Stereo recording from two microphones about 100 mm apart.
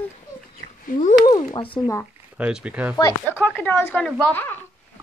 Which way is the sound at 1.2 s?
50° left (ahead or behind).